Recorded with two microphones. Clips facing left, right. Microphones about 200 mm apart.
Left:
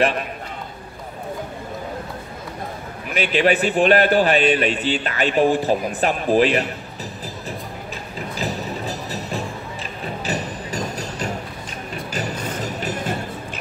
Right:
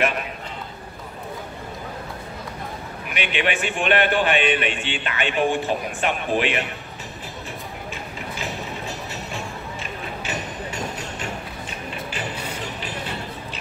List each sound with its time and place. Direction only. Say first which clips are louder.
3.1 s a man's voice: left 7 dB; 40° left (ahead or behind)
8.4 s music: left 6 dB; 35° left (ahead or behind)